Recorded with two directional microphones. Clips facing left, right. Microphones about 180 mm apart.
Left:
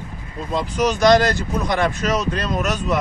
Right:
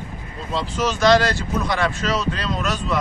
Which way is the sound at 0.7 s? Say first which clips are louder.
Left 2 dB; 15° left (ahead or behind).